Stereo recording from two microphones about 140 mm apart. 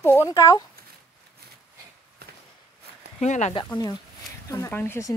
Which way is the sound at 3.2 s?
55° left (ahead or behind).